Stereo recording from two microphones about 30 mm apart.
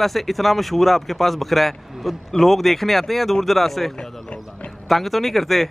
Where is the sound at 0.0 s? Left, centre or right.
Centre.